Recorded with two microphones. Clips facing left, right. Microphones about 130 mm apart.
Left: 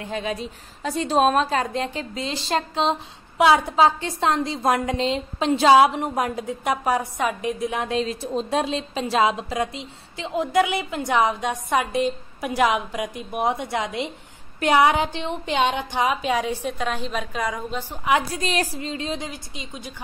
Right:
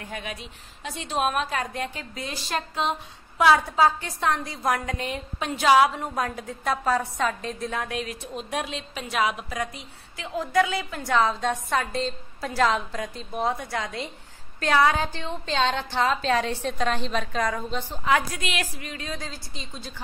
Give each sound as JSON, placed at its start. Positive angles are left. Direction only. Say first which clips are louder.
{"t": 0.0, "sound": "a woman's voice", "louder": "left 8 dB", "side_deg": 25}
{"t": 18.3, "sound": "a woman's voice", "louder": "left 6 dB", "side_deg": 35}